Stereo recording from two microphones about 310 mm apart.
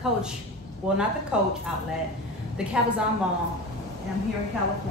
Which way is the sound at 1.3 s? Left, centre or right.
Centre.